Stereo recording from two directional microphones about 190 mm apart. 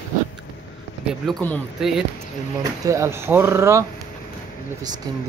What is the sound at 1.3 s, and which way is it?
Speech, 10° left (ahead or behind).